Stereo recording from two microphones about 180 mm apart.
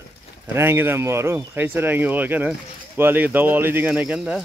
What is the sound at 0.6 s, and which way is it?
Speech, 15° right (ahead or behind).